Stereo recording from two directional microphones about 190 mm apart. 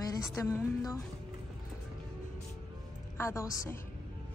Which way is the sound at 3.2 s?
15° left (ahead or behind).